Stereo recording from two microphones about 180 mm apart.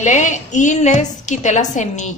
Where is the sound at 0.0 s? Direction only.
40° left (ahead or behind).